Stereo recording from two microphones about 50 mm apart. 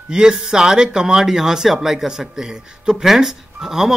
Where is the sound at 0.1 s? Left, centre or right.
Centre.